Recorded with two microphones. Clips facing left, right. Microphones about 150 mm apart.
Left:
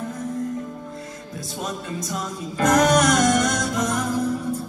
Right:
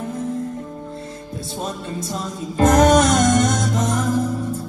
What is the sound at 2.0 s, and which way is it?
Music, 30° right (ahead or behind).